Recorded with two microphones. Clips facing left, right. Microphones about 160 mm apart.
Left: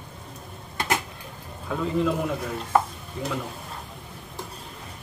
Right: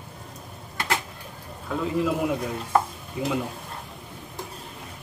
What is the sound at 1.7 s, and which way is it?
Stir, centre (ahead or behind).